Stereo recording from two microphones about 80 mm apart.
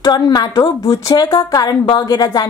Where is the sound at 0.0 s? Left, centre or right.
Left.